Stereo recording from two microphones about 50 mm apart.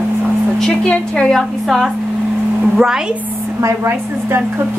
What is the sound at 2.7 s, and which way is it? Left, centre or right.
Speech, centre.